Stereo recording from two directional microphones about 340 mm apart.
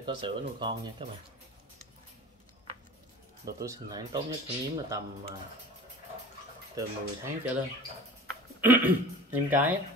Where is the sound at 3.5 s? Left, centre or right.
Centre.